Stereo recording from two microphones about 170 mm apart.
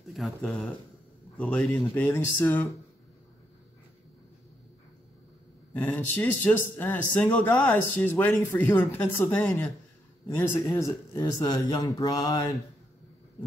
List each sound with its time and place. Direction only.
0.1 s speech: centre (ahead or behind)
5.7 s speech: 10° left (ahead or behind)
10.7 s speech: 20° left (ahead or behind)